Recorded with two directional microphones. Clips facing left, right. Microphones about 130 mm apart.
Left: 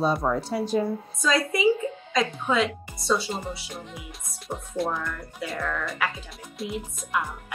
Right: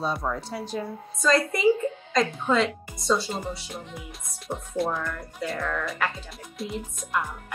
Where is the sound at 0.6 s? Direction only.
5° left (ahead or behind).